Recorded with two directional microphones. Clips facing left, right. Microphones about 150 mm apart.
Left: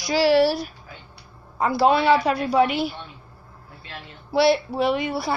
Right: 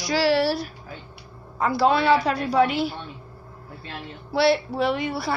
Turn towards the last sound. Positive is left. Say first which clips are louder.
# left 2 dB
turn(degrees=15)  # may be behind; listen again after turning